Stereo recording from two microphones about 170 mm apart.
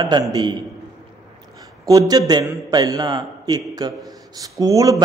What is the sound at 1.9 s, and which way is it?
A man's voice, 20° right (ahead or behind).